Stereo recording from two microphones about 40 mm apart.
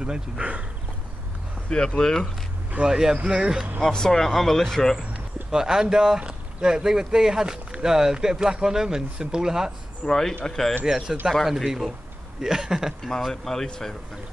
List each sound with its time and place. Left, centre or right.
0.0 s speech: right
1.7 s speech: centre
2.8 s speech: centre
3.8 s speech: centre
5.5 s speech: centre
10.0 s speech: centre
10.9 s speech: centre
11.4 s speech: centre
13.3 s speech: centre